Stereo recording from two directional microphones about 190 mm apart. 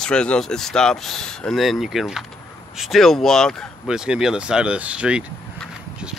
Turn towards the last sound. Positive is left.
turn(degrees=-5)  # may be behind; listen again after turning